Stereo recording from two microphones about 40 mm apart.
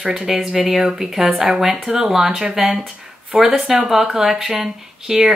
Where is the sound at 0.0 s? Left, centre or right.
Centre.